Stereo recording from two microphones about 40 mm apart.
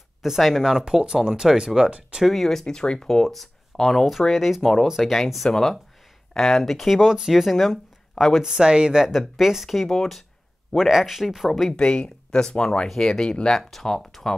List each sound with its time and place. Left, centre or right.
0.2 s speech: centre
1.0 s speech: centre
1.9 s speech: right
2.2 s speech: centre
2.6 s speech: centre
4.6 s speech: centre
4.8 s speech: centre
5.1 s speech: centre
7.0 s speech: centre
8.5 s speech: right
9.4 s speech: centre
10.8 s speech: centre
11.7 s speech: left